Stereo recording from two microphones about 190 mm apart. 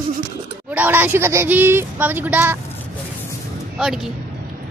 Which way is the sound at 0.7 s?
10° right (ahead or behind).